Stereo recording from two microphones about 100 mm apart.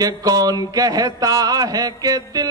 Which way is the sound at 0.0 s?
40° right (ahead or behind).